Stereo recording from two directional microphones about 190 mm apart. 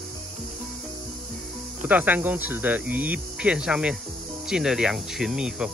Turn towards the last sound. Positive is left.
turn(degrees=-5)  # may be behind; listen again after turning